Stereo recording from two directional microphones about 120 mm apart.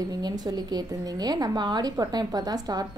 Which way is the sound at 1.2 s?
35° right (ahead or behind).